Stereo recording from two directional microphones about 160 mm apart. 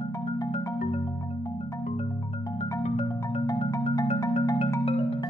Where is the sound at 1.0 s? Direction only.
20° left (ahead or behind).